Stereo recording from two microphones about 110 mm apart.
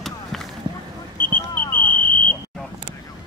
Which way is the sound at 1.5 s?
20° left (ahead or behind).